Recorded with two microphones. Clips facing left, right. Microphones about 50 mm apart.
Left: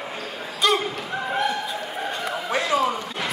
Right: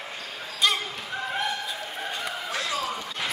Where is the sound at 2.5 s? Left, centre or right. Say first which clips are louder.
Left 9 dB; left.